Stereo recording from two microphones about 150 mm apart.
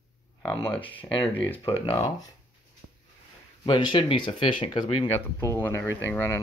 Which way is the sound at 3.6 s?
30° left (ahead or behind).